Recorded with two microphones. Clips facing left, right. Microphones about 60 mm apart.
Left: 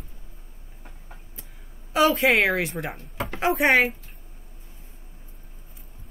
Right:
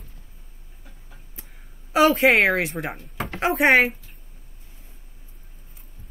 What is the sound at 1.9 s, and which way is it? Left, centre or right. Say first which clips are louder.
Speech: right 3 dB; centre.